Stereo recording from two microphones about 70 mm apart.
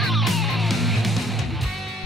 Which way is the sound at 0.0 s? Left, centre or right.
Centre.